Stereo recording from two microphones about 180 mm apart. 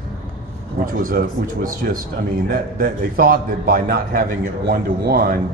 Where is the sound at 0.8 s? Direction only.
50° right (ahead or behind).